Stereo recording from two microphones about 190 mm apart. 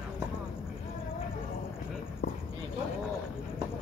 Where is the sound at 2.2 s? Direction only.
65° left (ahead or behind).